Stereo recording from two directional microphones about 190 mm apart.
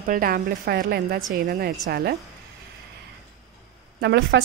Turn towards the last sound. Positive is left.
turn(degrees=-65)  # may be behind; listen again after turning